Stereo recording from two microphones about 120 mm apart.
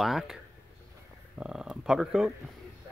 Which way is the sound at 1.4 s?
5° right (ahead or behind).